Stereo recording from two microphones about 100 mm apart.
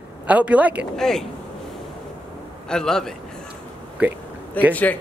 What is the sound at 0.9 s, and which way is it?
Speech, 5° left (ahead or behind).